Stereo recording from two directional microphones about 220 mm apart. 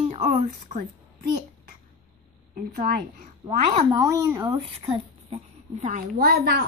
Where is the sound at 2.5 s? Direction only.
40° right (ahead or behind).